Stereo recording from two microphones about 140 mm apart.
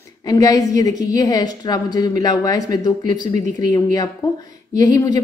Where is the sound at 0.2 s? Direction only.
25° left (ahead or behind).